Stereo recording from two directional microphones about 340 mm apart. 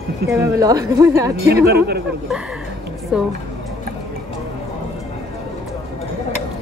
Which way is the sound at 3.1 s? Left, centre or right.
Centre.